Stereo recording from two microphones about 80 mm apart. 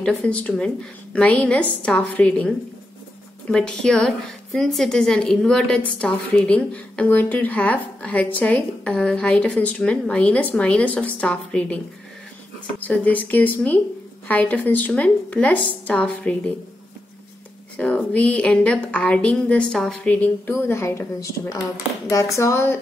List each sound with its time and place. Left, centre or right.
0.2 s a woman's voice: centre
12.8 s a woman's voice: centre
17.7 s a woman's voice: centre
20.4 s a woman's voice: left